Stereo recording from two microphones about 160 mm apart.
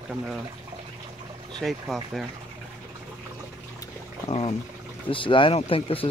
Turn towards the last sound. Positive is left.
turn(degrees=35)  # may be behind; listen again after turning